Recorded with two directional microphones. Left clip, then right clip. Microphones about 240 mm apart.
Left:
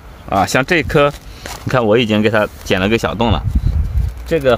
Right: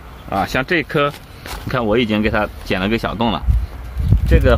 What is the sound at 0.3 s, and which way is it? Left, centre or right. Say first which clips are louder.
Speech: left 4 dB; left.